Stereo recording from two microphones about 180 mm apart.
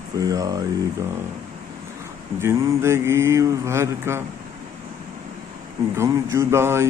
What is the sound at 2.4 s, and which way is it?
Speech, 15° right (ahead or behind).